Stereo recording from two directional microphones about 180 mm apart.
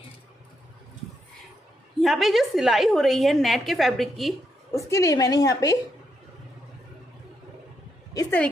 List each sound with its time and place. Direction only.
2.0 s a woman's voice: centre (ahead or behind)
4.7 s a woman's voice: 15° left (ahead or behind)
8.1 s a sound: 20° left (ahead or behind)